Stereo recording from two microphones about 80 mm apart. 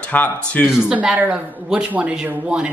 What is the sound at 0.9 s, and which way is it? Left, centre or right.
A woman's voice, centre.